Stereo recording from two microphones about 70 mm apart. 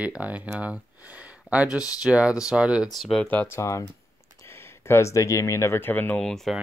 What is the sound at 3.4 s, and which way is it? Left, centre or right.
Speech, left.